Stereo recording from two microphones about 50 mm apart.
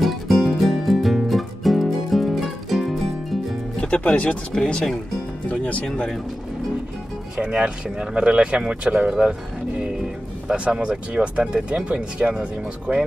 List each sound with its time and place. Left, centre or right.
0.0 s music: centre
3.8 s speech: left
7.3 s speech: right
9.8 s music: centre
10.5 s speech: right